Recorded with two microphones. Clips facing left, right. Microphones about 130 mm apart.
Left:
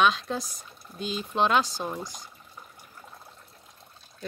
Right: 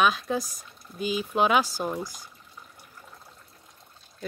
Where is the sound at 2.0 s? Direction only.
20° left (ahead or behind).